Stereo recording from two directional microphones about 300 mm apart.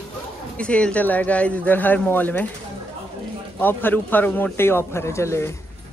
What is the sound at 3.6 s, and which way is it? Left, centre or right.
A man's voice, centre.